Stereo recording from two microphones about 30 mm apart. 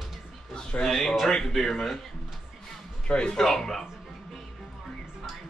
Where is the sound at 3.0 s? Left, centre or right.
Left.